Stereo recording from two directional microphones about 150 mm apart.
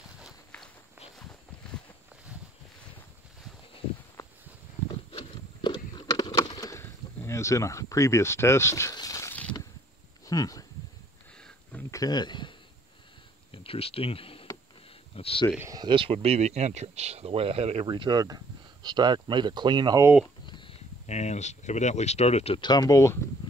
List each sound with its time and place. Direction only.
5.1 s a sound: 30° left (ahead or behind)
10.2 s speech: 25° left (ahead or behind)
11.9 s speech: 25° left (ahead or behind)
13.5 s a sound: 40° left (ahead or behind)
15.1 s speech: 40° left (ahead or behind)
15.7 s speech: 30° right (ahead or behind)
17.8 s speech: 30° right (ahead or behind)
20.4 s a sound: 30° left (ahead or behind)
21.1 s speech: 50° left (ahead or behind)
22.6 s speech: 30° left (ahead or behind)